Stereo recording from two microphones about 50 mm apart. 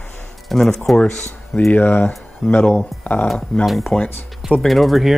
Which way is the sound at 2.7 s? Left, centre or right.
Left.